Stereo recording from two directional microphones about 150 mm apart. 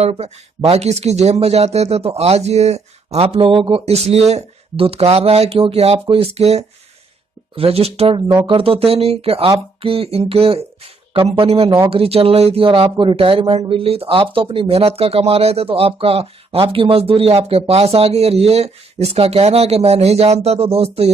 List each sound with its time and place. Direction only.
0.0 s speech: 40° right (ahead or behind)
8.3 s speech: 30° right (ahead or behind)